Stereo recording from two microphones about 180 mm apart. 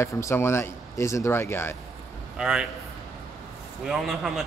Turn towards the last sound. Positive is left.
turn(degrees=0)  # may be behind; listen again after turning